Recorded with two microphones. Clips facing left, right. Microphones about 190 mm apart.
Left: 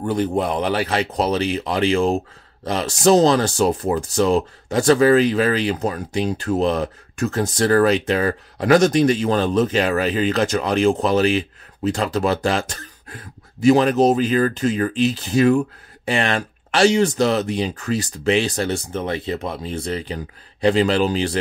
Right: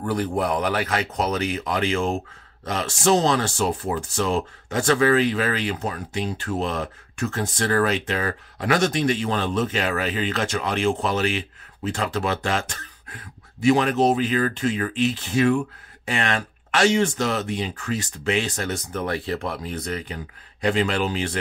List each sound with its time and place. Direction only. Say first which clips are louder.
0.0 s speech: left 3 dB; 25° left (ahead or behind)